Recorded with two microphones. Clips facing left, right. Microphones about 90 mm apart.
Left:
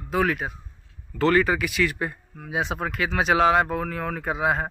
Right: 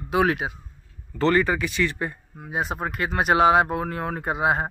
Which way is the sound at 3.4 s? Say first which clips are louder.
Right 3 dB; 15° right (ahead or behind).